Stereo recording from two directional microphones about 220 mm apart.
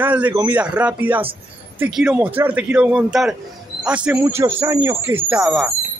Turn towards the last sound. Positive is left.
turn(degrees=0)  # may be behind; listen again after turning